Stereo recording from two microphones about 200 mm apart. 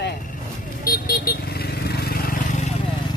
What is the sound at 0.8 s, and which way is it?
Vehicle, 45° left (ahead or behind).